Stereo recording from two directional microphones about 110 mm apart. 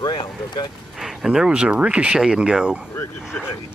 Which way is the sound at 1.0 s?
Centre (ahead or behind).